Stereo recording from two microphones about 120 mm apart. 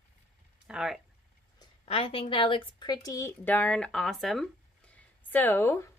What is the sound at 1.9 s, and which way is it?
A woman's voice, 50° left (ahead or behind).